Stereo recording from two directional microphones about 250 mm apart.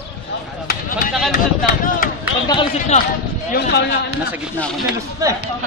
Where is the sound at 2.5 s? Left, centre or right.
Left.